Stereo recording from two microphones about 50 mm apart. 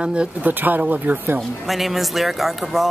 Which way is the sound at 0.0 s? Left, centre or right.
Right.